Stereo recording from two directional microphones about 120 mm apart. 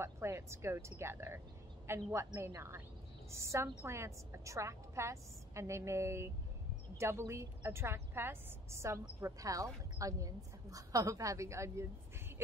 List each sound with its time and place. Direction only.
0.0 s a woman's voice: 20° right (ahead or behind)